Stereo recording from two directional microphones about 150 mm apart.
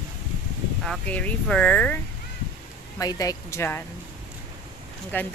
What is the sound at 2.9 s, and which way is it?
Speech, 25° left (ahead or behind).